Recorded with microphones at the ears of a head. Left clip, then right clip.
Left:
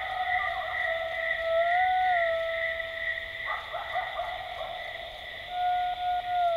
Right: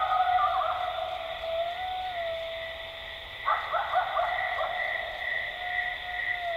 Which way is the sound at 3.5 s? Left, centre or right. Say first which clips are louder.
Right 9 dB; right.